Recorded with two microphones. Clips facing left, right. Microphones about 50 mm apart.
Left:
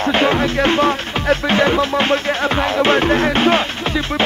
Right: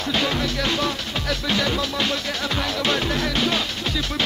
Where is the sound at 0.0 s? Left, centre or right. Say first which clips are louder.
Left 8 dB; left.